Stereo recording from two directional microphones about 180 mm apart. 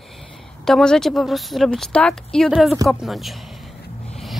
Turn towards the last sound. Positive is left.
turn(degrees=0)  # may be behind; listen again after turning